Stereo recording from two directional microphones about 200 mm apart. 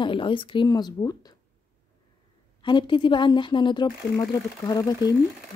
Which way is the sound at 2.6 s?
25° left (ahead or behind).